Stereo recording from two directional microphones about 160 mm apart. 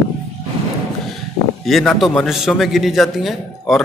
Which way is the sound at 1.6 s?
Centre (ahead or behind).